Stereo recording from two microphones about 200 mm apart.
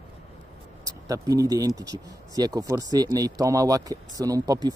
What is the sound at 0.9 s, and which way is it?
Speech, 15° right (ahead or behind).